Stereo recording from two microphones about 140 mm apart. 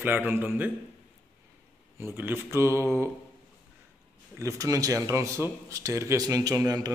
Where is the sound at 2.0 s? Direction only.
15° right (ahead or behind).